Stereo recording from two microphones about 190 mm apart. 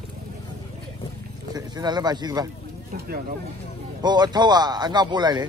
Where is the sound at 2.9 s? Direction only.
50° right (ahead or behind).